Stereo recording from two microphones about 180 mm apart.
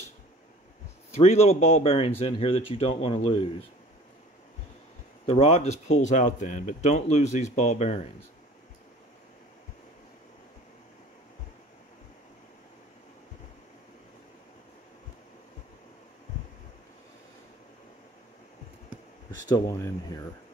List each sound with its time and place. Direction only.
1.1 s speech: 35° left (ahead or behind)
5.2 s speech: 35° left (ahead or behind)
19.5 s speech: 20° left (ahead or behind)